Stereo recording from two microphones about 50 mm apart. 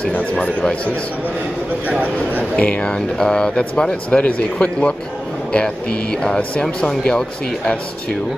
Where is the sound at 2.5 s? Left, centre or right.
Left.